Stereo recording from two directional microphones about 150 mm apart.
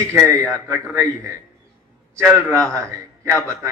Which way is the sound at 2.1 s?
15° right (ahead or behind).